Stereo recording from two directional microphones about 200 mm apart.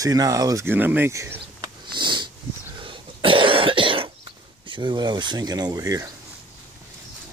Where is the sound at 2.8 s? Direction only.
25° right (ahead or behind).